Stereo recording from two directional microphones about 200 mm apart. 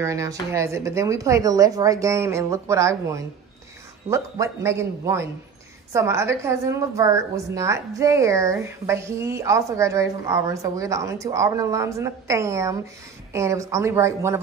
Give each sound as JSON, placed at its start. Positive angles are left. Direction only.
{"t": 0.0, "sound": "a woman's voice", "side_deg": -15}